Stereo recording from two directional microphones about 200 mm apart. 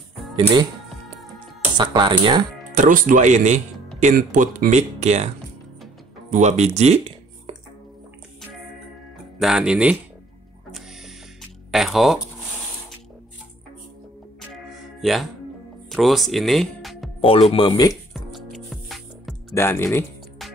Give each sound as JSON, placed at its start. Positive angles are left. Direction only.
{"t": 1.8, "sound": "speech", "side_deg": -25}
{"t": 2.7, "sound": "speech", "side_deg": -40}
{"t": 6.3, "sound": "speech", "side_deg": -35}
{"t": 9.4, "sound": "speech", "side_deg": -5}
{"t": 11.7, "sound": "speech", "side_deg": 0}
{"t": 14.5, "sound": "music", "side_deg": 0}
{"t": 15.9, "sound": "speech", "side_deg": 0}
{"t": 17.2, "sound": "speech", "side_deg": 30}
{"t": 18.1, "sound": "music", "side_deg": 0}
{"t": 19.5, "sound": "speech", "side_deg": 10}